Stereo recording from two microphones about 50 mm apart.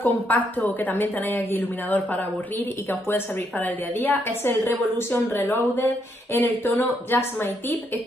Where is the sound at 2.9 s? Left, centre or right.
Left.